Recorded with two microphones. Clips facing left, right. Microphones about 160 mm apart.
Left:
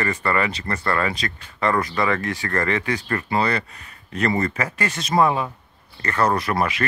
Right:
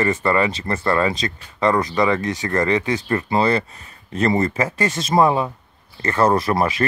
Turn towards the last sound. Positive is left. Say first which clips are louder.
# right 3 dB
turn(degrees=-25)  # may be behind; listen again after turning